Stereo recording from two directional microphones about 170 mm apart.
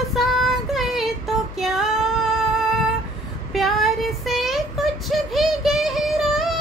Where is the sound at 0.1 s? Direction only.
Centre (ahead or behind).